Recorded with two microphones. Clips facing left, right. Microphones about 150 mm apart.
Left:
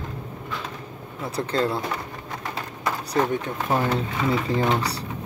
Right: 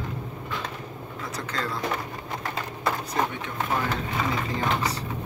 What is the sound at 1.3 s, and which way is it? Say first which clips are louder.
Speech: left 8 dB; 30° left (ahead or behind).